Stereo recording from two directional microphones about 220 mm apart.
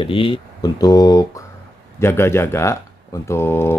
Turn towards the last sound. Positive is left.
turn(degrees=10)  # may be behind; listen again after turning